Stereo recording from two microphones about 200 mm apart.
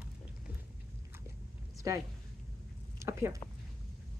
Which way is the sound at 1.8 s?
15° right (ahead or behind).